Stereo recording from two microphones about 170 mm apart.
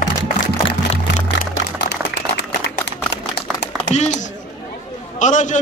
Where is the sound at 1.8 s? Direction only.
90° left.